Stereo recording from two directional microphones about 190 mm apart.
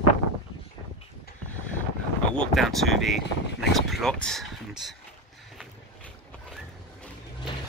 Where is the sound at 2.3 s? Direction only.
Centre (ahead or behind).